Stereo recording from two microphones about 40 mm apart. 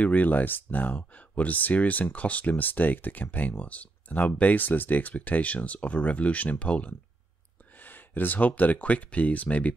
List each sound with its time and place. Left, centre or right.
0.0 s speech: left
7.8 s speech: left